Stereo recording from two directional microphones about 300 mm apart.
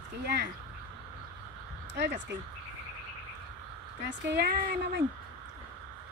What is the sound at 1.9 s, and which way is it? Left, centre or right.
Speech, right.